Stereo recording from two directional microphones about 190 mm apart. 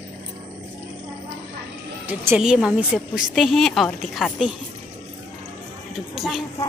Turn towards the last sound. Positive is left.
turn(degrees=0)  # may be behind; listen again after turning